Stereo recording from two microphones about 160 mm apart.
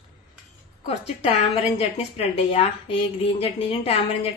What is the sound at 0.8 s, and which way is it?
A woman's voice, 40° left (ahead or behind).